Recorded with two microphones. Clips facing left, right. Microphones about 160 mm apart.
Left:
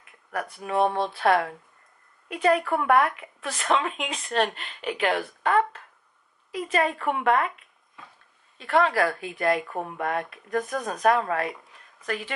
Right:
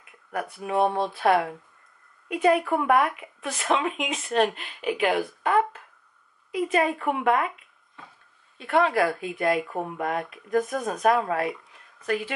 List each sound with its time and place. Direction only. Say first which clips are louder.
0.6 s speech: even; 5° right (ahead or behind)
8.5 s speech: even; 15° right (ahead or behind)